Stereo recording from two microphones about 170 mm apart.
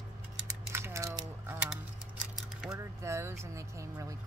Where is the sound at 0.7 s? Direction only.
15° right (ahead or behind).